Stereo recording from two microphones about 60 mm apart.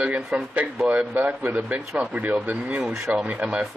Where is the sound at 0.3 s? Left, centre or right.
Centre.